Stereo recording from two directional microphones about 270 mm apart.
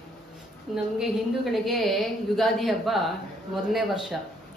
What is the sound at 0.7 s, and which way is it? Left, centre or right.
A woman's voice, centre.